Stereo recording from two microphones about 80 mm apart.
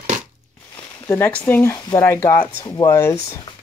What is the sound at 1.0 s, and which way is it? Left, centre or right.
Speech, left.